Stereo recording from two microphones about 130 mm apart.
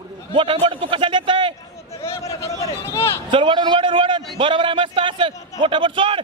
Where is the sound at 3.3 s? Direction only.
40° right (ahead or behind).